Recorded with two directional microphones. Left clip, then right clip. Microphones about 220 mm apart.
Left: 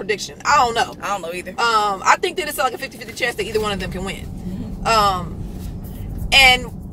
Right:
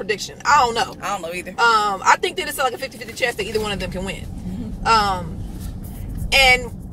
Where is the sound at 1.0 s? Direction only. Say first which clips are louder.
Left 1 dB; 10° right (ahead or behind).